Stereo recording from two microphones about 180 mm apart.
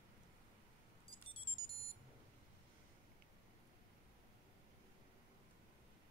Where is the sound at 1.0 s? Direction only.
30° left (ahead or behind).